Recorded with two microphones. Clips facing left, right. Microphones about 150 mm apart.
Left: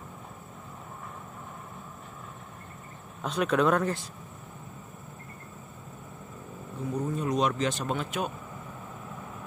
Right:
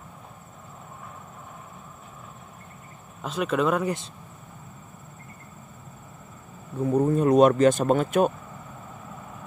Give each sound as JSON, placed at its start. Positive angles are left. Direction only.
{"t": 3.2, "sound": "speech", "side_deg": 0}
{"t": 6.9, "sound": "speech", "side_deg": -55}